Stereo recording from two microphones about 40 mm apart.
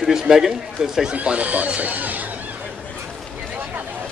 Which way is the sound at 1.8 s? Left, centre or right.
Right.